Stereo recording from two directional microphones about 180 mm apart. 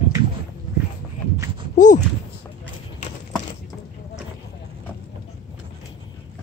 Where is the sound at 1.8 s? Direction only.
45° left (ahead or behind).